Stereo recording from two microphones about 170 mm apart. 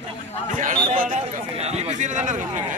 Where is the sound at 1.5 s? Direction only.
40° right (ahead or behind).